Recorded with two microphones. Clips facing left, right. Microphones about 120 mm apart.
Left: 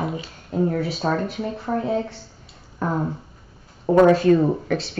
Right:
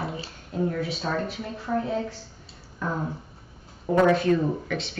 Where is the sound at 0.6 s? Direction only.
40° left (ahead or behind).